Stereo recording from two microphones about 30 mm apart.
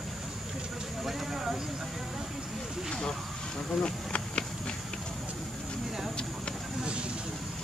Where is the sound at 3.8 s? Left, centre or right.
Left.